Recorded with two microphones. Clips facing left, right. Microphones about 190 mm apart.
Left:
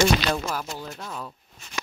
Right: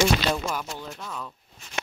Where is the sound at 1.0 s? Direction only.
25° left (ahead or behind).